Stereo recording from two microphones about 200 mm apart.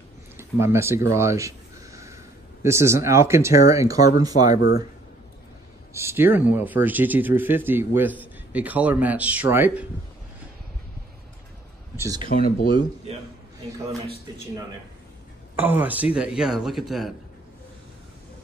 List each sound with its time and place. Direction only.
0.4 s speech: 10° right (ahead or behind)
1.1 s a sound: 15° right (ahead or behind)
2.6 s speech: 15° right (ahead or behind)
5.9 s speech: 10° right (ahead or behind)
12.0 s speech: 20° right (ahead or behind)
12.3 s speech: 45° left (ahead or behind)
13.1 s a man's voice: 35° right (ahead or behind)
15.5 s a man's voice: 10° right (ahead or behind)